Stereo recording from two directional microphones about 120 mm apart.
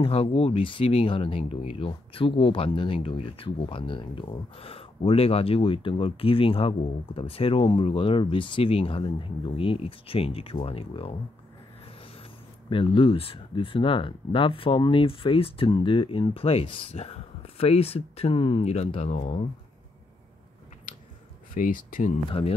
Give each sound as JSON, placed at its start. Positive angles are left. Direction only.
{"t": 0.0, "sound": "speech", "side_deg": 55}
{"t": 12.6, "sound": "speech", "side_deg": 45}
{"t": 20.9, "sound": "a sound", "side_deg": 90}
{"t": 21.6, "sound": "speech", "side_deg": 90}
{"t": 22.3, "sound": "speech", "side_deg": 55}